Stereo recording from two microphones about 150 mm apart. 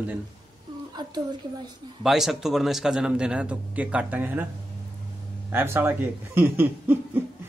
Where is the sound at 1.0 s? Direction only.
30° right (ahead or behind).